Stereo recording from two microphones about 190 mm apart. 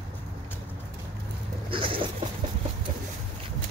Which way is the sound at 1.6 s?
30° right (ahead or behind).